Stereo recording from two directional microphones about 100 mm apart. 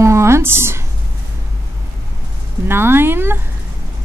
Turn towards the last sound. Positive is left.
turn(degrees=-20)  # may be behind; listen again after turning